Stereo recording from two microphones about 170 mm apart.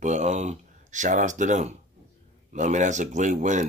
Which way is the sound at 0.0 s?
45° right (ahead or behind).